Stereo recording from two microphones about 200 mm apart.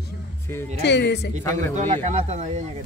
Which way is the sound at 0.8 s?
60° left (ahead or behind).